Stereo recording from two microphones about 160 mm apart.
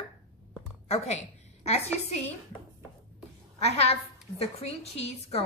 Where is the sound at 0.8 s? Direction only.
40° left (ahead or behind).